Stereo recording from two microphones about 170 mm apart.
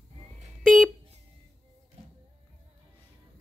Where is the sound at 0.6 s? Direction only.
Centre (ahead or behind).